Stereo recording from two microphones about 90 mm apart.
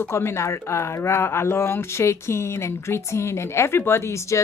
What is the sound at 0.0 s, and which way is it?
A woman's voice, 30° left (ahead or behind).